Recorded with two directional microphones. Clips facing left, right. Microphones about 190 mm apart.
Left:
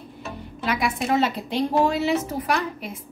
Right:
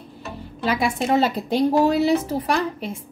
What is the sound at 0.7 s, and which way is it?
A woman's voice, 30° right (ahead or behind).